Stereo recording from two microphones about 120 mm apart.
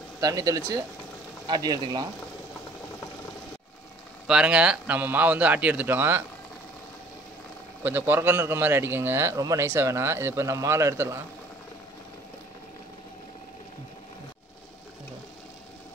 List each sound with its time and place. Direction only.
0.2 s a man's voice: 30° right (ahead or behind)
1.5 s speech: 35° right (ahead or behind)
4.3 s speech: 5° right (ahead or behind)
7.8 s a man's voice: 15° right (ahead or behind)